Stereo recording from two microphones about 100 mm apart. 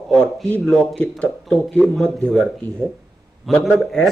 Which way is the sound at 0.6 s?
10° left (ahead or behind).